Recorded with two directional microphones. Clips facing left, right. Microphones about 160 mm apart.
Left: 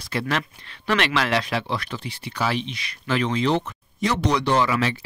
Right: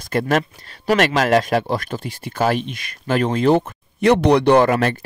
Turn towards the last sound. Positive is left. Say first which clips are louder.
# right 7 dB
turn(degrees=-50)  # may be behind; listen again after turning